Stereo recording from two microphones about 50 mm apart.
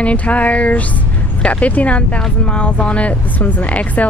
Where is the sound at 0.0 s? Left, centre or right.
Left.